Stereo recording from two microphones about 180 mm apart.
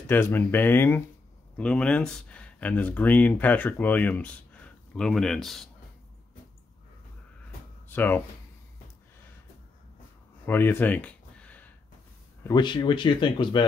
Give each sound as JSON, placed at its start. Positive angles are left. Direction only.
{"t": 0.0, "sound": "speech", "side_deg": 10}
{"t": 7.9, "sound": "speech", "side_deg": 10}
{"t": 10.4, "sound": "a sound", "side_deg": 10}
{"t": 12.4, "sound": "speech", "side_deg": 25}